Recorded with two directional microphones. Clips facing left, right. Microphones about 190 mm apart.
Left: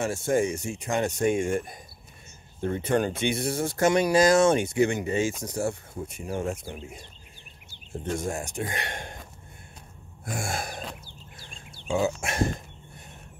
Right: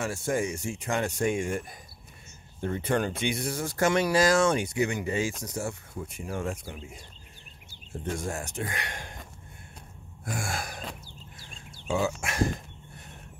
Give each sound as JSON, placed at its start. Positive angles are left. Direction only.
{"t": 0.0, "sound": "speech", "side_deg": 25}
{"t": 2.8, "sound": "speech", "side_deg": 25}
{"t": 8.2, "sound": "speech", "side_deg": 15}
{"t": 8.7, "sound": "speech", "side_deg": 25}
{"t": 10.3, "sound": "speech", "side_deg": 25}
{"t": 12.2, "sound": "speech", "side_deg": 25}